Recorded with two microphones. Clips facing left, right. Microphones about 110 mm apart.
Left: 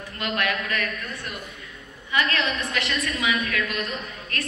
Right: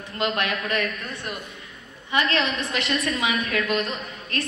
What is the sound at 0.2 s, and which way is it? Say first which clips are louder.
A woman's voice: right 2 dB; 25° right (ahead or behind).